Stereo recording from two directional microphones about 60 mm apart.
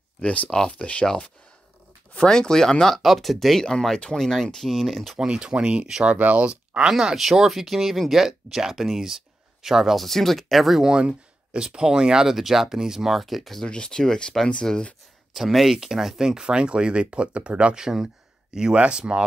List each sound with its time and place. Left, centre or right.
0.2 s speech: left; by 5.2 s centre
5.2 s speech: centre
10.9 s speech: centre
15.3 s speech: centre